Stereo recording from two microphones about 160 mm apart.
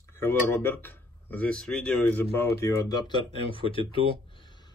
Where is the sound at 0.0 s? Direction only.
15° left (ahead or behind).